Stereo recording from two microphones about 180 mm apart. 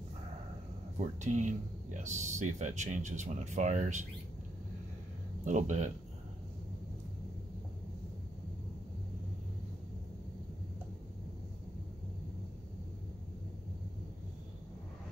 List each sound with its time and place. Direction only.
1.2 s speech: 40° right (ahead or behind)
5.4 s speech: 40° right (ahead or behind)